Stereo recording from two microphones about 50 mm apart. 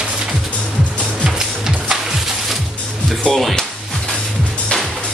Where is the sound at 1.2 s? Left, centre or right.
Centre.